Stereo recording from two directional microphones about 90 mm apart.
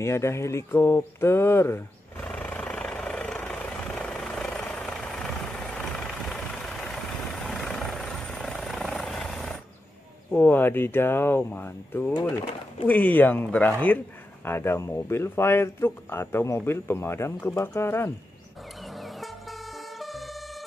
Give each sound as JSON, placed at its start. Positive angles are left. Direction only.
{"t": 0.0, "sound": "speech", "side_deg": 30}
{"t": 2.2, "sound": "vehicle", "side_deg": 15}
{"t": 10.3, "sound": "speech", "side_deg": 20}
{"t": 18.8, "sound": "vehicle", "side_deg": 0}